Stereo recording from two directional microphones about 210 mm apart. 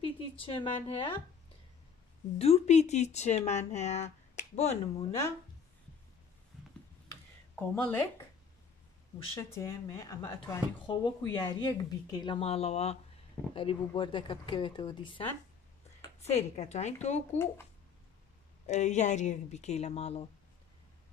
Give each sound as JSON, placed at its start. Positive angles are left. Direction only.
{"t": 0.0, "sound": "speech", "side_deg": 25}
{"t": 2.3, "sound": "speech", "side_deg": 30}
{"t": 7.1, "sound": "a sound", "side_deg": 5}
{"t": 9.3, "sound": "speech", "side_deg": 15}
{"t": 18.7, "sound": "speech", "side_deg": 35}